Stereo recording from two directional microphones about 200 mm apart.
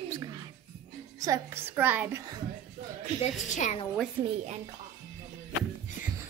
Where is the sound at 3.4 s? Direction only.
40° left (ahead or behind).